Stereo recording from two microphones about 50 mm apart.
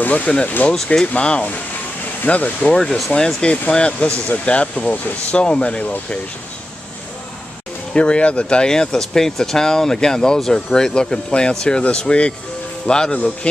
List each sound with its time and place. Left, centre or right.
0.0 s speech: left
2.7 s speech: centre
7.9 s speech: left